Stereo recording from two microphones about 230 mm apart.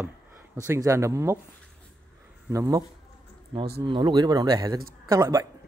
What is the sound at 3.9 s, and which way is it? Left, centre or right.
Speech, centre.